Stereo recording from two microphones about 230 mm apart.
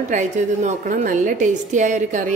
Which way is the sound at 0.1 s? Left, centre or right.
Right.